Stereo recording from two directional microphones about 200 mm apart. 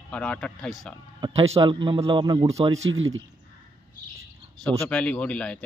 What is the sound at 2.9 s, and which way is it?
Speech, 75° right (ahead or behind).